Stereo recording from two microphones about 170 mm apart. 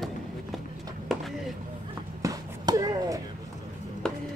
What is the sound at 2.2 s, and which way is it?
Basketball bounce, 20° right (ahead or behind).